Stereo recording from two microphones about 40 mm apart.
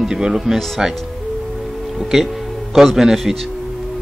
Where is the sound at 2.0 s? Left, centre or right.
Centre.